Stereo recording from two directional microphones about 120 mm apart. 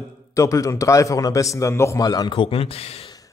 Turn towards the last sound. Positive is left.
turn(degrees=60)  # may be behind; listen again after turning